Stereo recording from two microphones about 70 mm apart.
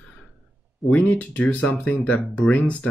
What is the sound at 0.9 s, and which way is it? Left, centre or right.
Speech, left.